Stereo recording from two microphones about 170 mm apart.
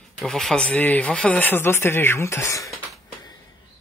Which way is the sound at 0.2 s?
Centre (ahead or behind).